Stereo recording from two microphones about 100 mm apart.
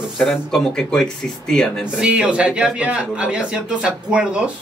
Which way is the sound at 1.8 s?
10° right (ahead or behind).